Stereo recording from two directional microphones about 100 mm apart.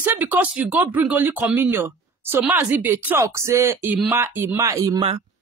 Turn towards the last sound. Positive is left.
turn(degrees=-35)  # may be behind; listen again after turning